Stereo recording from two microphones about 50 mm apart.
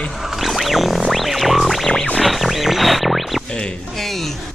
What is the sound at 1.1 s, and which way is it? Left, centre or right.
Music, centre.